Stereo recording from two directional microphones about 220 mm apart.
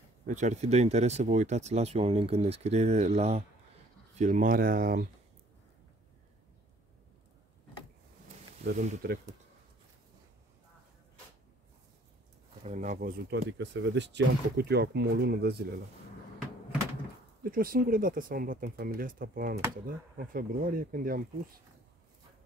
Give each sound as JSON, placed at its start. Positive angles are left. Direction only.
{"t": 0.3, "sound": "speech", "side_deg": -30}
{"t": 8.6, "sound": "speech", "side_deg": -40}
{"t": 12.6, "sound": "speech", "side_deg": -35}
{"t": 13.3, "sound": "speech", "side_deg": -50}
{"t": 17.4, "sound": "speech", "side_deg": -40}